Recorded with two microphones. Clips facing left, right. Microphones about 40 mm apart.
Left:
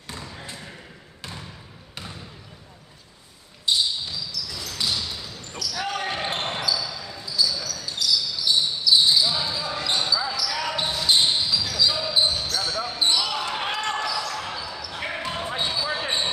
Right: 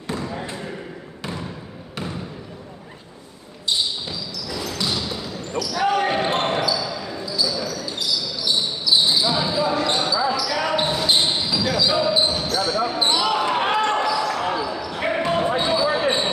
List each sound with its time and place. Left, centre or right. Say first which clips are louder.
4.1 s basketball bounce: right 3 dB; right
7.2 s basketball bounce: even; centre
7.5 s basketball bounce: right 5 dB; right